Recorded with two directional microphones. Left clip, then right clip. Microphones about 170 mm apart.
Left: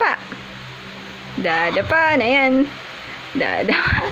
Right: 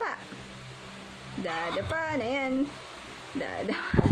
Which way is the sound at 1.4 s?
30° left (ahead or behind).